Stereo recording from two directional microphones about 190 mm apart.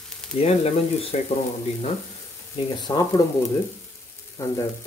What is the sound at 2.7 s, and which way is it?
Speech, 20° left (ahead or behind).